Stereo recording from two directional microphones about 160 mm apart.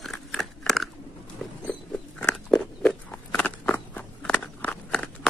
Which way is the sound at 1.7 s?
5° left (ahead or behind).